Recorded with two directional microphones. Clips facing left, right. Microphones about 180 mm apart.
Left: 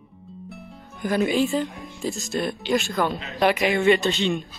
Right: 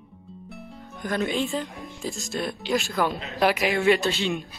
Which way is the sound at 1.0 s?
5° left (ahead or behind).